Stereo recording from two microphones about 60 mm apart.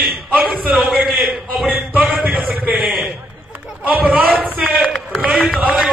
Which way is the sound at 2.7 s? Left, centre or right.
Centre.